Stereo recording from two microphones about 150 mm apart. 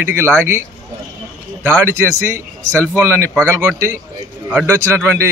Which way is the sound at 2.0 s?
15° right (ahead or behind).